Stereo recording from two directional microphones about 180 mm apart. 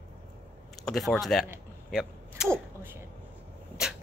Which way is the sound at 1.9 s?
Centre (ahead or behind).